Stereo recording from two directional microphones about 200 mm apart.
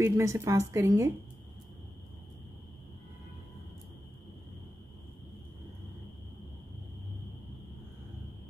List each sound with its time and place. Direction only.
0.0 s a woman's voice: 15° right (ahead or behind)